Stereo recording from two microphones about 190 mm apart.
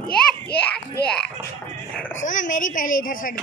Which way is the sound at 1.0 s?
5° left (ahead or behind).